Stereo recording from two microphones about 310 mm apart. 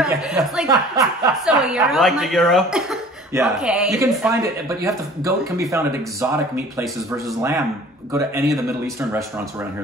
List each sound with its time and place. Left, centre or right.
0.0 s a woman's voice: centre
8.1 s speech: centre